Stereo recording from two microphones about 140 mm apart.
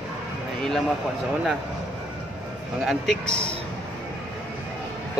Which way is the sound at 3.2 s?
50° right (ahead or behind).